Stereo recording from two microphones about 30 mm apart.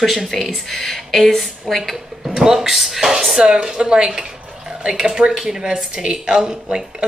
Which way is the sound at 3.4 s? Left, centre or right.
Right.